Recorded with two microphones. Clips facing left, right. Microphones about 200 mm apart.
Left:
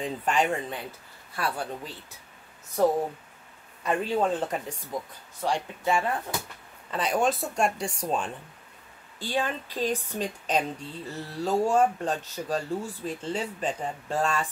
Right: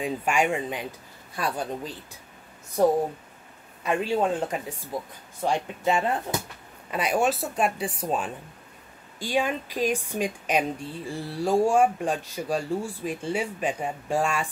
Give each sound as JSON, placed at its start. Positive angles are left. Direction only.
{"t": 0.0, "sound": "speech", "side_deg": -10}
{"t": 3.8, "sound": "speech", "side_deg": -10}
{"t": 5.4, "sound": "speech", "side_deg": -20}
{"t": 6.9, "sound": "speech", "side_deg": -10}